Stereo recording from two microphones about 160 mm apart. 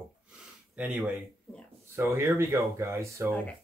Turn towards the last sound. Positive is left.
turn(degrees=5)  # may be behind; listen again after turning